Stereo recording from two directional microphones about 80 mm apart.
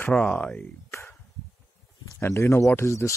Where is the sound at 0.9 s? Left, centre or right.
Left.